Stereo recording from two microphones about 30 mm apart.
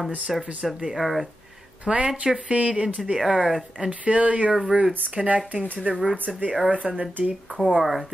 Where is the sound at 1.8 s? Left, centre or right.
Right.